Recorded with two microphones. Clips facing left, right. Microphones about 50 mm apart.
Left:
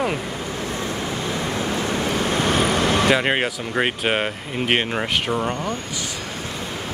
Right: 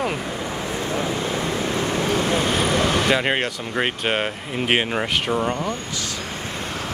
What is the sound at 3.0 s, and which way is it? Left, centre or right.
Speech, centre.